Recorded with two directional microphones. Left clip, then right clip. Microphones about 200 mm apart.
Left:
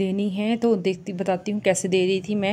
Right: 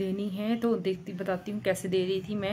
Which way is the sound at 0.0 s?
25° left (ahead or behind).